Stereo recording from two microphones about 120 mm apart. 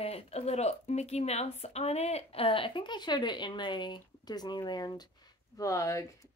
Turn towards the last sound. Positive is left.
turn(degrees=25)  # may be behind; listen again after turning